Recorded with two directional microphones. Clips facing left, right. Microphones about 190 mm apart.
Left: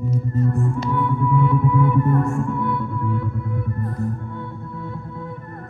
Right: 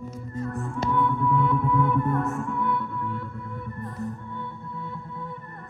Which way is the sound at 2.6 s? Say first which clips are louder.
Left 4 dB; 40° left (ahead or behind).